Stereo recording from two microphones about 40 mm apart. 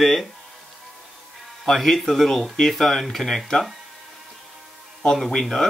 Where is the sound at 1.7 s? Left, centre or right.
Centre.